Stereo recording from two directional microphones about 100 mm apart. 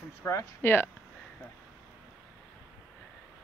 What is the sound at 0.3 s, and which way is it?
Speech, 25° left (ahead or behind).